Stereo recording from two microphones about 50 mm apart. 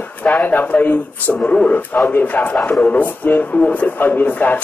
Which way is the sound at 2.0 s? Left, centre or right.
Left.